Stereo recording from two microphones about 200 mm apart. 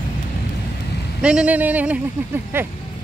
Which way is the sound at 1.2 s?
5° right (ahead or behind).